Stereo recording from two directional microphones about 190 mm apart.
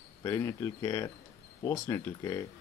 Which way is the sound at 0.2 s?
15° left (ahead or behind).